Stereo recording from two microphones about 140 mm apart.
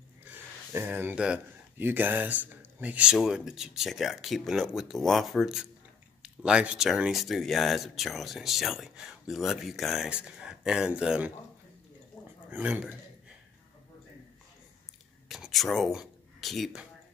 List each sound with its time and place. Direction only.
0.2 s speech: 15° right (ahead or behind)
12.4 s speech: 10° right (ahead or behind)
15.2 s speech: centre (ahead or behind)